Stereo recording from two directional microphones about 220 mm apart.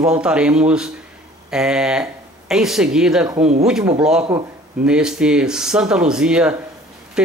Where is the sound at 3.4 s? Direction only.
30° right (ahead or behind).